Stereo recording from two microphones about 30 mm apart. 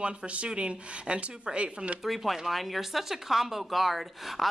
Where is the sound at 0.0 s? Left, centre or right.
Right.